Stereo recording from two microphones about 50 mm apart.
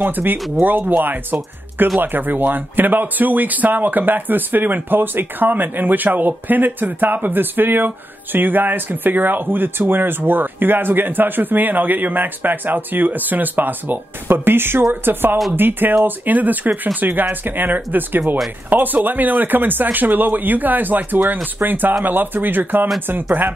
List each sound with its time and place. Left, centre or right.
0.0 s speech: right